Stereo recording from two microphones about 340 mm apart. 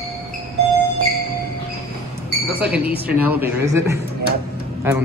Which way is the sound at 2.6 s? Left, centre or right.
Centre.